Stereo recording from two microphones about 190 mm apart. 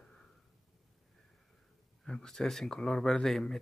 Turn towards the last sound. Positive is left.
turn(degrees=0)  # may be behind; listen again after turning